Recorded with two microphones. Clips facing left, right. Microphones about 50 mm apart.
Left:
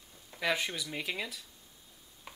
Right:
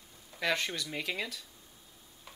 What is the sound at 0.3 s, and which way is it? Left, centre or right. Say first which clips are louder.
Speech: even; centre.